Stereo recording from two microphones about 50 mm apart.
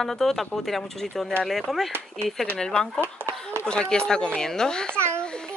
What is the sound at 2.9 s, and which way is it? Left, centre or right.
Speech, right.